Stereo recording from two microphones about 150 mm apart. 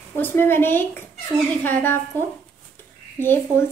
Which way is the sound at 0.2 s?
15° left (ahead or behind).